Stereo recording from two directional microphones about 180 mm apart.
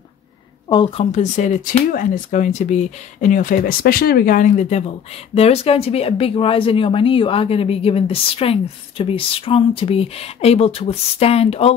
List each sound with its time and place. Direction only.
0.7 s speech: 25° left (ahead or behind)